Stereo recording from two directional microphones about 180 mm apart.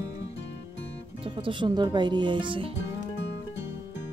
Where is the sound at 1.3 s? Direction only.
30° right (ahead or behind).